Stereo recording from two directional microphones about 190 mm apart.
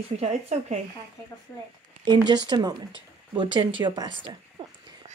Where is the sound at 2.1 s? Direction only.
25° right (ahead or behind).